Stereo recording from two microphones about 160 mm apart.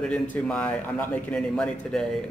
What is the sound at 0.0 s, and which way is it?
Speech, 5° left (ahead or behind).